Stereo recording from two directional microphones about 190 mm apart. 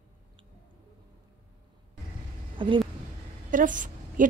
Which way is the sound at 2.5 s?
25° right (ahead or behind).